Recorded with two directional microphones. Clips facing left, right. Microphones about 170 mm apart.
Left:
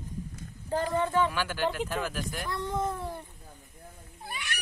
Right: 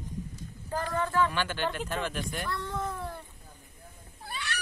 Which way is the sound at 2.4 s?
15° left (ahead or behind).